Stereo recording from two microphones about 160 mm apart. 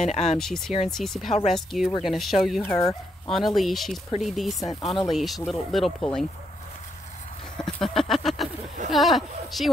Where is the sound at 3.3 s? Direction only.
Centre (ahead or behind).